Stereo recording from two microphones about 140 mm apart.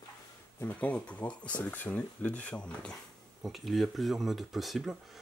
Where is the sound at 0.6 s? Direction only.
10° left (ahead or behind).